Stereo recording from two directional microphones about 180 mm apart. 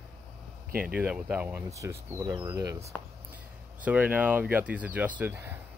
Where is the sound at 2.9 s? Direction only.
10° left (ahead or behind).